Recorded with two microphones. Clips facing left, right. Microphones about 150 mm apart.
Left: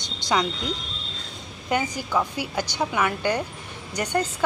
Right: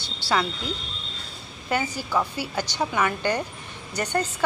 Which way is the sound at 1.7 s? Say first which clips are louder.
Left 1 dB; 15° left (ahead or behind).